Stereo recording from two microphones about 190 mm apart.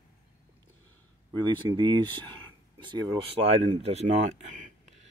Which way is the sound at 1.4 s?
25° right (ahead or behind).